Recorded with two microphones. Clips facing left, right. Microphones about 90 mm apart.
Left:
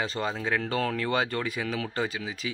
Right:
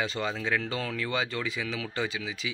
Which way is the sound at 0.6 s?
50° left (ahead or behind).